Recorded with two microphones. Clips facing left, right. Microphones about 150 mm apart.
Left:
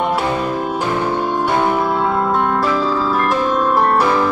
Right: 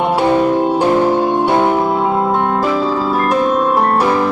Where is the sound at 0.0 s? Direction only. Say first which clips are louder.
Right 5 dB; 25° right (ahead or behind).